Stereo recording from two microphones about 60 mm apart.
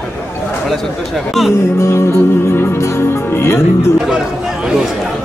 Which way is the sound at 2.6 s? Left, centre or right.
Left.